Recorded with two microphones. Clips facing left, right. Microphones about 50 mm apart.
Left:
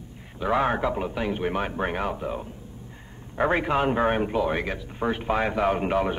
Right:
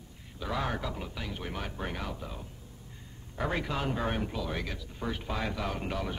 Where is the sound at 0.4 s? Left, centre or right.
Left.